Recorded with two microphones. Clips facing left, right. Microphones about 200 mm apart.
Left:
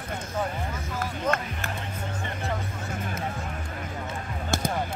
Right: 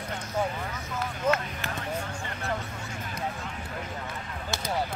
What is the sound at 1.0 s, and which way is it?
Speech, 50° left (ahead or behind).